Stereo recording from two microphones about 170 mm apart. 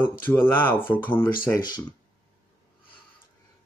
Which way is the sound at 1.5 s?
25° left (ahead or behind).